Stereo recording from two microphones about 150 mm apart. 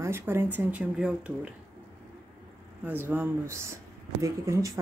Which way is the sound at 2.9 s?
15° right (ahead or behind).